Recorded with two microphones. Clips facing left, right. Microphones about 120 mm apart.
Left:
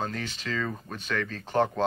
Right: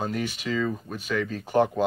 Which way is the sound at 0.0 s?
10° right (ahead or behind).